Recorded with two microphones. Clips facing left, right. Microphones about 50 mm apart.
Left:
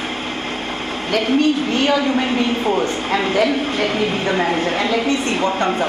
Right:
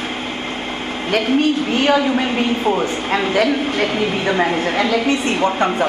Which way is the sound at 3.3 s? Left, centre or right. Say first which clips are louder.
Right 1 dB; right.